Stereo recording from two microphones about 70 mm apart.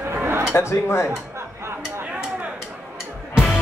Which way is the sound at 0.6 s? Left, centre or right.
Left.